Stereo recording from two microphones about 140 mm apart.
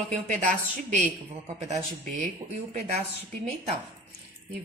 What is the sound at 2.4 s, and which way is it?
Speech, 55° right (ahead or behind).